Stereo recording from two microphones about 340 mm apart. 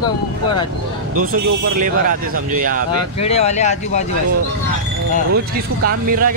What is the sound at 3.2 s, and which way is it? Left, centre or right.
Speech, centre.